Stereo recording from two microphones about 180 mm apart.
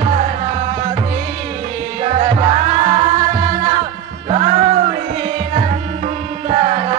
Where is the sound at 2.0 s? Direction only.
35° right (ahead or behind).